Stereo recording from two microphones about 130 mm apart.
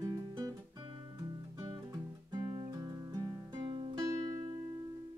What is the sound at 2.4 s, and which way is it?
Music, 45° right (ahead or behind).